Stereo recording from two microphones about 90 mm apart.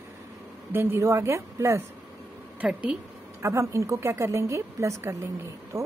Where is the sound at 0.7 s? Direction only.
30° right (ahead or behind).